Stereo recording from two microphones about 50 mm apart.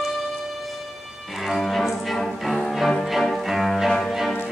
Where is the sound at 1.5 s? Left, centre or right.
Centre.